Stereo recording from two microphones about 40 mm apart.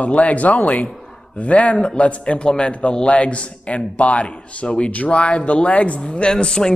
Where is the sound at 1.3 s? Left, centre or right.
Left.